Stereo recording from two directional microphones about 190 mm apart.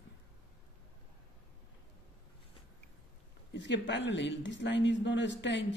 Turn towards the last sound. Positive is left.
turn(degrees=75)  # may be behind; listen again after turning